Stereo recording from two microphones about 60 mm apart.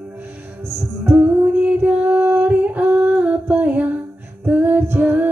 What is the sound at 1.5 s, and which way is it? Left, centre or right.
Singing, right.